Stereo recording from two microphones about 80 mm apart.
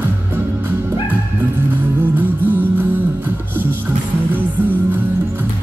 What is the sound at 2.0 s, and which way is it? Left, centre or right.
Music, right.